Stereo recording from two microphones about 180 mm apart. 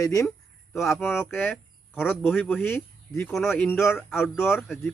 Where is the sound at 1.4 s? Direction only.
10° left (ahead or behind).